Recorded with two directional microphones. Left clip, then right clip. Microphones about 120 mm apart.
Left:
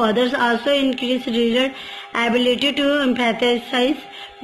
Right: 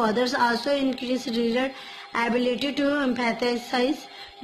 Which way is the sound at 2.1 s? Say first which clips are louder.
Left 6 dB; 30° right (ahead or behind).